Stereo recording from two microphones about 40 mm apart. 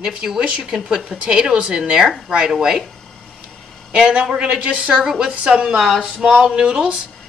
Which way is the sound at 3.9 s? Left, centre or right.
Right.